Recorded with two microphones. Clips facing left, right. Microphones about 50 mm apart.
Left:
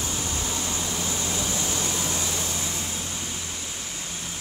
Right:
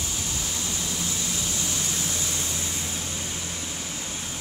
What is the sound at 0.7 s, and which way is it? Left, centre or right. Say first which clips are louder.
Vehicle: left 2 dB; left.